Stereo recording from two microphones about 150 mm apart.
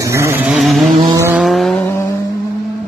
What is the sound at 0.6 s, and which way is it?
Vehicle, centre (ahead or behind).